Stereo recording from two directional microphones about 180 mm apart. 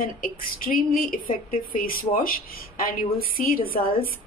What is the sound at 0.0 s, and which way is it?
A woman's voice, 50° left (ahead or behind).